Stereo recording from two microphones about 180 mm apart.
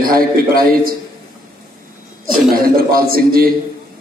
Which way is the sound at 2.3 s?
55° right (ahead or behind).